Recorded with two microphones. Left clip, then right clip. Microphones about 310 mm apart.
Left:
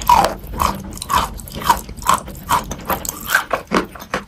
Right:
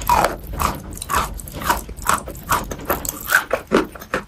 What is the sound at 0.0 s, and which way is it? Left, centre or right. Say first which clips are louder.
Crunch: left 4 dB; centre.